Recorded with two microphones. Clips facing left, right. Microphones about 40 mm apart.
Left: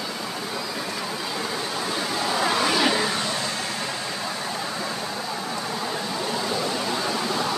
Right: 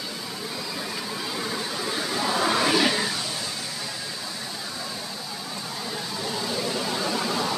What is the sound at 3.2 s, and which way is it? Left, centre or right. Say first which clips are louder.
Vehicle: left 5 dB; left.